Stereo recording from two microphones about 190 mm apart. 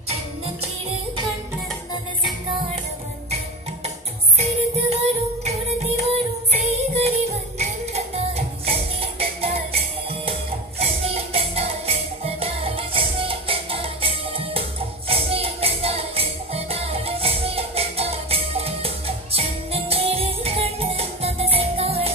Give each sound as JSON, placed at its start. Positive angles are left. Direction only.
{"t": 4.4, "sound": "music", "side_deg": -35}